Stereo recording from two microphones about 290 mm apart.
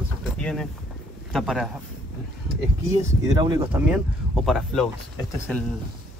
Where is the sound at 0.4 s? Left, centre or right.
Centre.